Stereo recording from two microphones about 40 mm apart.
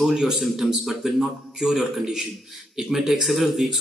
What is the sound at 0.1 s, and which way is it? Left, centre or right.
Speech, centre.